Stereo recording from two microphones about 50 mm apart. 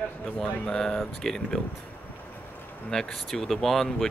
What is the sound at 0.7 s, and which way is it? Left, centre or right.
Speech, centre.